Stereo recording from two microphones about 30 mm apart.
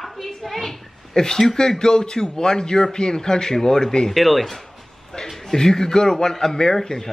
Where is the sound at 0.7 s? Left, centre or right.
Left.